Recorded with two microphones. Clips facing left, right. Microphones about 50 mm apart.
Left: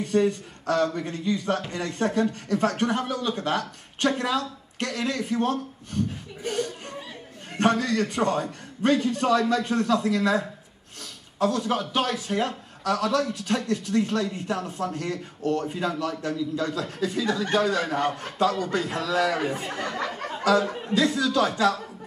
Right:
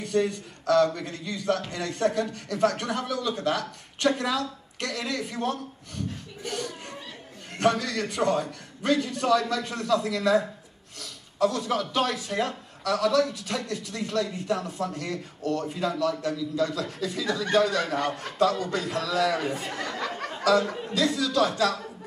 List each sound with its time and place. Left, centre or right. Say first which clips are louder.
0.0 s a man's voice: left 3 dB; left